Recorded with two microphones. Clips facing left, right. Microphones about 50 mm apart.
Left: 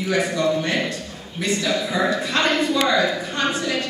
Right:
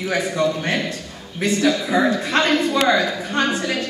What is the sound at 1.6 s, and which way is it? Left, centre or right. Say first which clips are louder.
Speech: right 5 dB; right.